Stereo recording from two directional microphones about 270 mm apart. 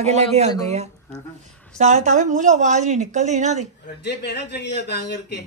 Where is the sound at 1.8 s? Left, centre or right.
Right.